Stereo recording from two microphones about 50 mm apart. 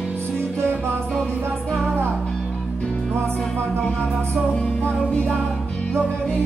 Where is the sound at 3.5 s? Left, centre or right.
Left.